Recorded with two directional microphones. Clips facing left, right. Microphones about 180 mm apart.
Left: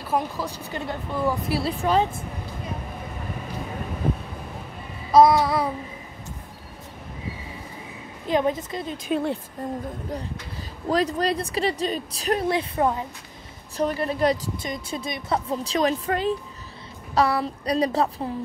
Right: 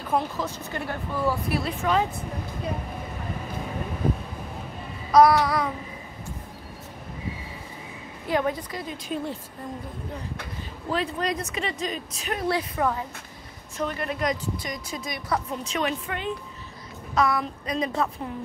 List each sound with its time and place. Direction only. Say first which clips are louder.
0.1 s speech: even; 10° left (ahead or behind)
1.5 s a woman's voice: left 2 dB; 35° left (ahead or behind)
5.1 s a woman's voice: left 1 dB; 25° left (ahead or behind)
8.3 s a woman's voice: left 3 dB; 20° left (ahead or behind)
9.1 s a woman's voice: left 6 dB; 65° left (ahead or behind)
10.9 s a woman's voice: left 5 dB; 40° left (ahead or behind)
12.4 s a woman's voice: right 2 dB; 25° left (ahead or behind)